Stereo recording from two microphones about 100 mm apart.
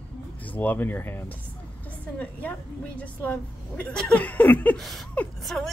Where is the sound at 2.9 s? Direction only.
15° left (ahead or behind).